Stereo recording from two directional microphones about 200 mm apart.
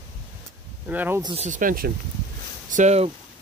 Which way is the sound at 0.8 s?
10° right (ahead or behind).